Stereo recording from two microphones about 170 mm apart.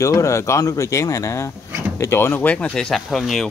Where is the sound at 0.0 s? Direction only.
20° left (ahead or behind).